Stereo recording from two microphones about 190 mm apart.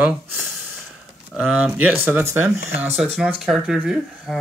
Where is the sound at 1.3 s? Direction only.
5° right (ahead or behind).